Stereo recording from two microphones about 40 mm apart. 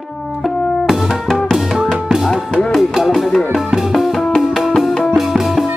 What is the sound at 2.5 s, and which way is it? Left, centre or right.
Music, centre.